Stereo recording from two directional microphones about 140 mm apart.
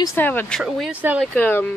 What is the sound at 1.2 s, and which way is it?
Speech, 15° left (ahead or behind).